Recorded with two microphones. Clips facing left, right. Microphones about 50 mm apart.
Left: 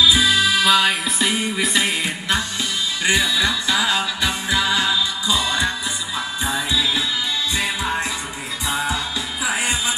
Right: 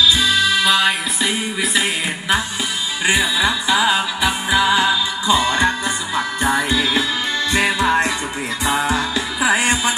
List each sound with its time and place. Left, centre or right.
0.0 s music: centre
3.0 s music: centre
5.3 s music: right
6.1 s music: right